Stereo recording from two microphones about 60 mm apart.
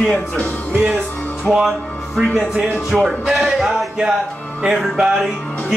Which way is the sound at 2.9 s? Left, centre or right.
Centre.